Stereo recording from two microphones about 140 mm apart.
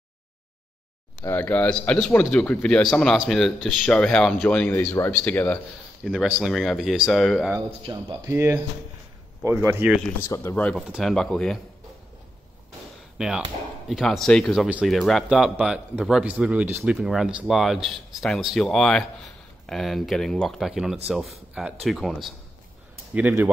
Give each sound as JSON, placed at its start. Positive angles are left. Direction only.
{"t": 1.2, "sound": "speech", "side_deg": 15}
{"t": 6.0, "sound": "speech", "side_deg": 0}
{"t": 7.8, "sound": "speech", "side_deg": -35}
{"t": 8.3, "sound": "speech", "side_deg": -15}
{"t": 10.2, "sound": "speech", "side_deg": 20}
{"t": 10.5, "sound": "speech", "side_deg": 10}
{"t": 10.8, "sound": "speech", "side_deg": 0}
{"t": 13.2, "sound": "speech", "side_deg": -5}
{"t": 23.1, "sound": "speech", "side_deg": -10}